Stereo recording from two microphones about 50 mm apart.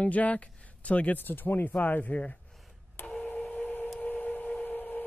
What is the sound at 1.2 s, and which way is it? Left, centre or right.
Speech, left.